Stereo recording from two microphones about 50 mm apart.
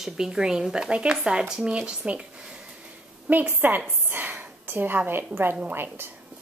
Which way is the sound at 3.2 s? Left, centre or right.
Right.